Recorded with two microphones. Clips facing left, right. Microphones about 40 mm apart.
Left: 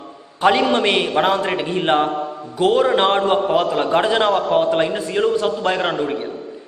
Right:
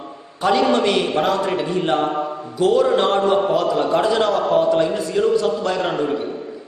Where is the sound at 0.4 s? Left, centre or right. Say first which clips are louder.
Left 1 dB; left.